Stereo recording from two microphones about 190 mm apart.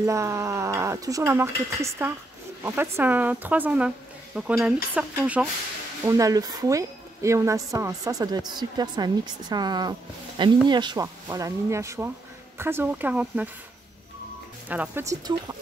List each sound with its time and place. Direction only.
0.0 s speech: 15° right (ahead or behind)
6.0 s a woman's voice: 15° right (ahead or behind)
14.7 s speech: 10° right (ahead or behind)